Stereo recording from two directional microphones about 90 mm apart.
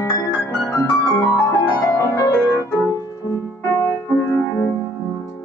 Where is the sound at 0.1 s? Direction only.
35° left (ahead or behind).